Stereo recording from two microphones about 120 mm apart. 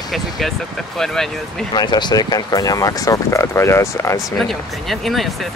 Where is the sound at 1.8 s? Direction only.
40° left (ahead or behind).